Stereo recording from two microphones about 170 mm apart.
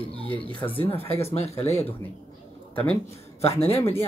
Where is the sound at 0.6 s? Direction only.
20° left (ahead or behind).